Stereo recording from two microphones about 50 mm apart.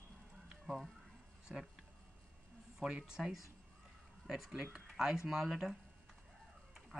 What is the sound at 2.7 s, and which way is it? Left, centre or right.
Speech, centre.